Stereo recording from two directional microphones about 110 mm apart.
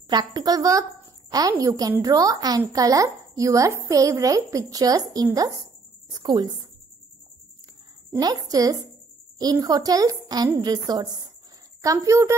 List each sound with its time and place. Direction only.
0.1 s a woman's voice: 40° right (ahead or behind)
8.2 s a woman's voice: 35° right (ahead or behind)